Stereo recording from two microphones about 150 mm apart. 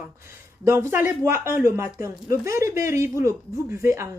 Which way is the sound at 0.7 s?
15° right (ahead or behind).